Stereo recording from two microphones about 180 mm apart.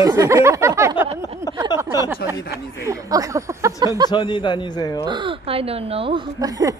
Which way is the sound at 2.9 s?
20° right (ahead or behind).